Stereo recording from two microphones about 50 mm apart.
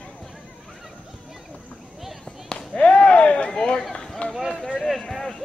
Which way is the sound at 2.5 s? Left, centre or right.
Centre.